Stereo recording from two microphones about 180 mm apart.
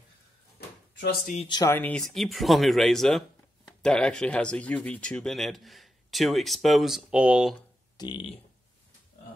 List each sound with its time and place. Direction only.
0.6 s a sound: 60° left (ahead or behind)
1.5 s speech: 15° left (ahead or behind); by 7.5 s 5° right (ahead or behind)
8.0 s speech: 20° left (ahead or behind)